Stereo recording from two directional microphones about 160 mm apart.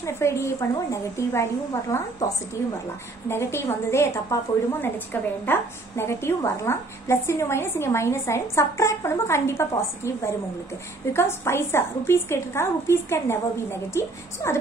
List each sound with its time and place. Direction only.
0.0 s a woman's voice: 20° left (ahead or behind)